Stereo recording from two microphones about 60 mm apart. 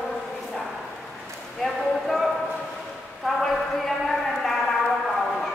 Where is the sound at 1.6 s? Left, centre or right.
Centre.